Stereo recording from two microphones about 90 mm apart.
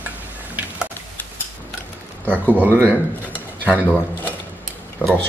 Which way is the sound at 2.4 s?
20° right (ahead or behind).